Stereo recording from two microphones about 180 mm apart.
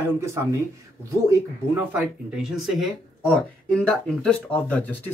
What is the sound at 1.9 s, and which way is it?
Speech, 5° right (ahead or behind).